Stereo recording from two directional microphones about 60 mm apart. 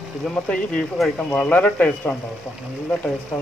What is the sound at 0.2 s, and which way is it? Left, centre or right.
Speech, centre.